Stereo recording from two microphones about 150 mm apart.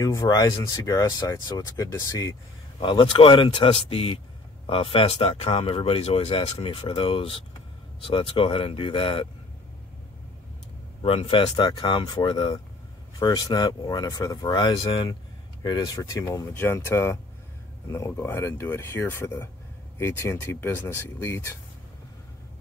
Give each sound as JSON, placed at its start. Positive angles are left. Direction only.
{"t": 0.0, "sound": "speech", "side_deg": 25}
{"t": 2.8, "sound": "speech", "side_deg": 35}
{"t": 11.0, "sound": "speech", "side_deg": 35}